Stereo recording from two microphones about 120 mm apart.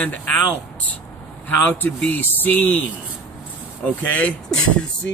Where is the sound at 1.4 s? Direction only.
15° left (ahead or behind).